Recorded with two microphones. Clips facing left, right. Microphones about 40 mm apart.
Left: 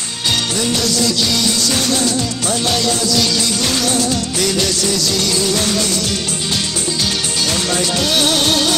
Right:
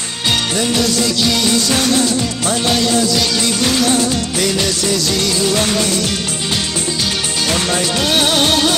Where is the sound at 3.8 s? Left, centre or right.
Right.